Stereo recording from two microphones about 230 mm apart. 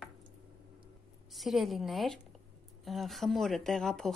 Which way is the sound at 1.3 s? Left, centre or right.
Centre.